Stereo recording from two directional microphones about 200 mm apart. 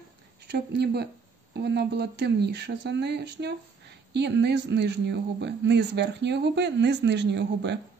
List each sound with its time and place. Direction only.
0.5 s speech: 55° right (ahead or behind)